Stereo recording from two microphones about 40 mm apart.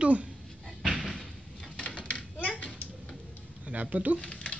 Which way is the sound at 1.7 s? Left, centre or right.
Left.